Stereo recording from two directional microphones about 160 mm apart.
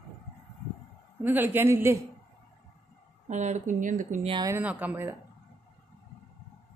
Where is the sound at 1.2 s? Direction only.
10° right (ahead or behind).